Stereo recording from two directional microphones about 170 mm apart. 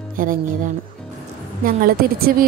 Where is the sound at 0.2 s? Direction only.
55° right (ahead or behind).